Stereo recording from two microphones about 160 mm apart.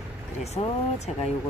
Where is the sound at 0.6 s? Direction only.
40° left (ahead or behind).